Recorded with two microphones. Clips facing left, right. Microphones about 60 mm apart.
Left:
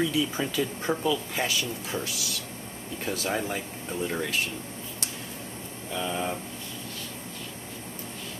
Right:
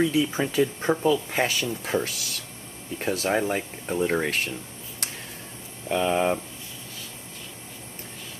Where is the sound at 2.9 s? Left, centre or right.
Right.